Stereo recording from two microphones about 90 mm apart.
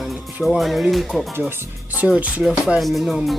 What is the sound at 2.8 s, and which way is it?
Music, centre (ahead or behind).